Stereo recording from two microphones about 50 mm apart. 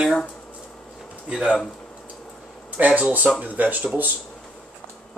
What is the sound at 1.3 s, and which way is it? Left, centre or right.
Speech, centre.